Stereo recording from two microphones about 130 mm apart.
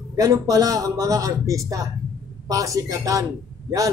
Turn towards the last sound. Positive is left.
turn(degrees=-25)  # may be behind; listen again after turning